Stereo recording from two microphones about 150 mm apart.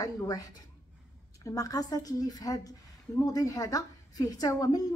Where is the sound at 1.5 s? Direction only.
25° left (ahead or behind).